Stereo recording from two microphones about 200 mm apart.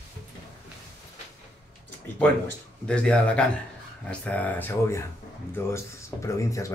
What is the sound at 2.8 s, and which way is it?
Speech, 5° left (ahead or behind).